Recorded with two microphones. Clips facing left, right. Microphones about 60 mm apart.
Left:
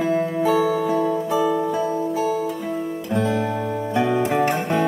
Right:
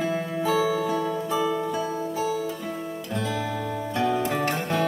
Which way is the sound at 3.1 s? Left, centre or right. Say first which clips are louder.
Left 7 dB; left.